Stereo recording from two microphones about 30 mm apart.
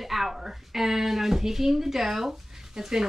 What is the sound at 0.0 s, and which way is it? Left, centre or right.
A woman's voice, centre.